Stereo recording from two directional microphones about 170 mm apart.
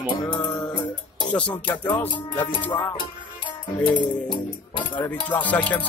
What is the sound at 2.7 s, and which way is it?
Music, 20° left (ahead or behind).